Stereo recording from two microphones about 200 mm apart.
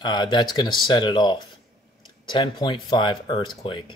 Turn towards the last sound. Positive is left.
turn(degrees=25)  # may be behind; listen again after turning